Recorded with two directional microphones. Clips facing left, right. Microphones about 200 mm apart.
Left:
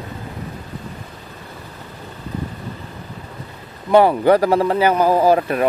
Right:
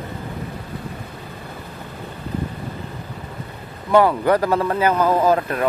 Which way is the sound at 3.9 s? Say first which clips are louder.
Left 3 dB; 25° left (ahead or behind).